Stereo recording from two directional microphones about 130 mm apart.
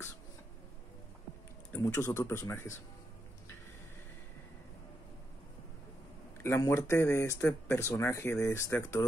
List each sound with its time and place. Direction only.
1.8 s speech: 25° left (ahead or behind)
6.4 s speech: 20° left (ahead or behind)